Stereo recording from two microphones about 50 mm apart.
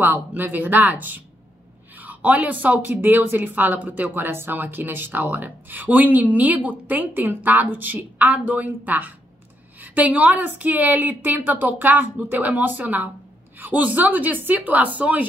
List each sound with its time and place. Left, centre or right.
0.0 s a woman's voice: right